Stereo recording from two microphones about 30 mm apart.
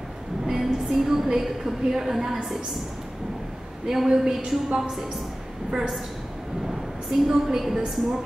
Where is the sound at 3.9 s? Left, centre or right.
Centre.